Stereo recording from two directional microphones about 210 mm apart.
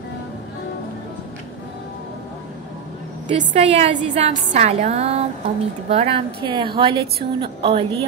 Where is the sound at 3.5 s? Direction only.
30° right (ahead or behind).